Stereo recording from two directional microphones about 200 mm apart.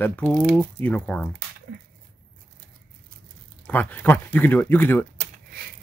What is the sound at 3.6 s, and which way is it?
Speech, 10° left (ahead or behind).